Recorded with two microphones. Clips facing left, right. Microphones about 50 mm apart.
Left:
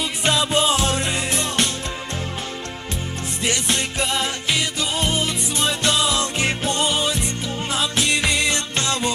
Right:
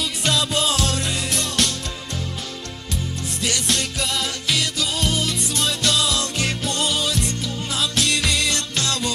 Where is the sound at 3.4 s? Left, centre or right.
Left.